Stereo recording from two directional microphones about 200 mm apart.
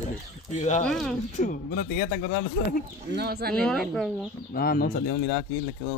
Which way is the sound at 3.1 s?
55° right (ahead or behind).